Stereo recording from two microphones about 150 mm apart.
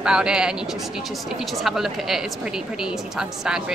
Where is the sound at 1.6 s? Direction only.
Centre (ahead or behind).